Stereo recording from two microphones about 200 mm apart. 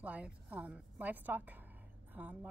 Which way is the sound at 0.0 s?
5° right (ahead or behind).